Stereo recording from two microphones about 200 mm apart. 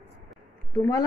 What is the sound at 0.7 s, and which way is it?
Speech, 15° left (ahead or behind).